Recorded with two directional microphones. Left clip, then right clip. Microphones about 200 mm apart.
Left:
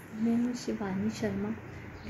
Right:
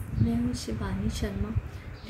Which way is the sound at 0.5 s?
25° right (ahead or behind).